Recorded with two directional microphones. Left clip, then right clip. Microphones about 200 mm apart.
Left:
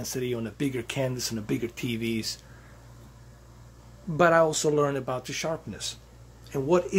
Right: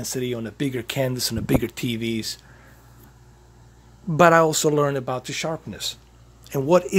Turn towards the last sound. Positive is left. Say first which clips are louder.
# right 6 dB
turn(degrees=-50)  # may be behind; listen again after turning